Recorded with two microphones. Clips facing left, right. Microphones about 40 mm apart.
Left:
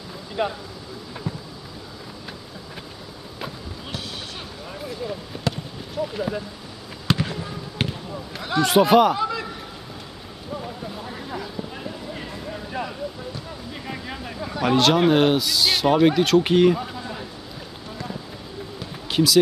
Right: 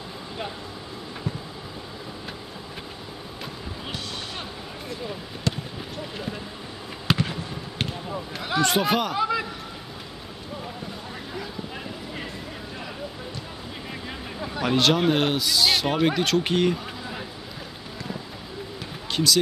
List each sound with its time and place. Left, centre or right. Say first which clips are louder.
0.4 s speech: left 9 dB; left
4.8 s a sound: left 4 dB; centre
6.1 s speech: left 5 dB; centre
7.1 s basketball bounce: left 1 dB; centre
7.8 s basketball bounce: left 3 dB; centre
8.4 s speech: left 5 dB; centre
9.2 s a sound: right 1 dB; centre
10.6 s vehicle: left 3 dB; centre
11.7 s clip-clop: left 2 dB; centre
14.4 s a sound: left 3 dB; centre
14.7 s speech: left 4 dB; centre
16.8 s a sound: left 2 dB; centre
19.0 s basketball bounce: left 3 dB; centre